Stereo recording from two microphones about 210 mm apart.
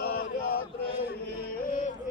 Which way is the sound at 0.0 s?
50° left (ahead or behind).